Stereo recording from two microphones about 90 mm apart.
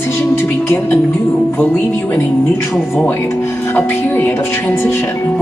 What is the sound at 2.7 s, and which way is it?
Speech, centre (ahead or behind).